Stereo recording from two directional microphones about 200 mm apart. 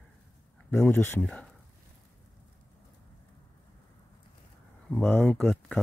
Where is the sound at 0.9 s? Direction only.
10° left (ahead or behind).